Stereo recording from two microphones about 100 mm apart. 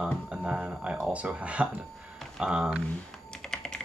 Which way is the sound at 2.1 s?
5° right (ahead or behind).